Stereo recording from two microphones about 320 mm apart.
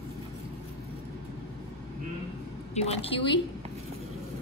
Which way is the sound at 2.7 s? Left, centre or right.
Centre.